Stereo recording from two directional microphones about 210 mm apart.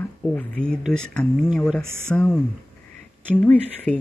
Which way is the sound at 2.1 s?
10° left (ahead or behind).